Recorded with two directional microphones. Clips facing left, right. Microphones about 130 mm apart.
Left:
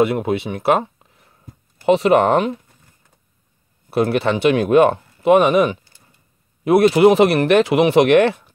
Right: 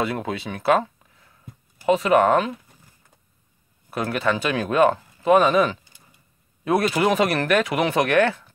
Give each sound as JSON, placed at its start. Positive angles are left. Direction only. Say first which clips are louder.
{"t": 0.0, "sound": "speech", "louder": "left 8 dB", "side_deg": 20}
{"t": 1.9, "sound": "speech", "louder": "left 4 dB", "side_deg": 30}
{"t": 3.9, "sound": "speech", "louder": "left 6 dB", "side_deg": 25}
{"t": 6.8, "sound": "speech", "louder": "left 10 dB", "side_deg": 25}